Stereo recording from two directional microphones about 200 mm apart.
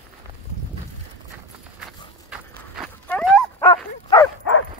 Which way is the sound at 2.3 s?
5° right (ahead or behind).